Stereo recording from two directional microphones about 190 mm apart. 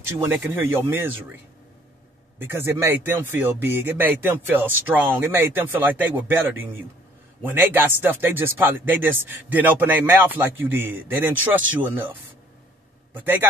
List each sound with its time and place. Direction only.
0.2 s speech: 10° right (ahead or behind)
2.3 s speech: 10° right (ahead or behind)
13.1 s speech: 10° right (ahead or behind)